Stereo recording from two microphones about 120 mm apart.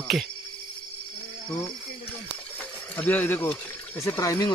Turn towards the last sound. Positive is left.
turn(degrees=25)  # may be behind; listen again after turning